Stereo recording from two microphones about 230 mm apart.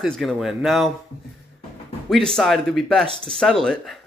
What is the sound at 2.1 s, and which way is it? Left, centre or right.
Speech, centre.